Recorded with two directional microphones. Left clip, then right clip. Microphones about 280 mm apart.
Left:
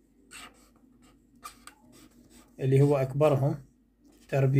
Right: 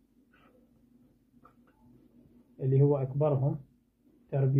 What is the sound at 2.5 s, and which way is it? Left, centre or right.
A man's voice, left.